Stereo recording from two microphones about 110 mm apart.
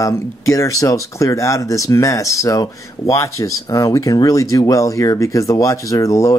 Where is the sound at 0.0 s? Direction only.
30° left (ahead or behind).